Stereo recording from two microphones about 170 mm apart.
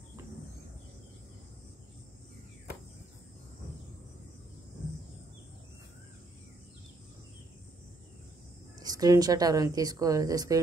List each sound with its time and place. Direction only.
8.7 s a woman's voice: 20° right (ahead or behind)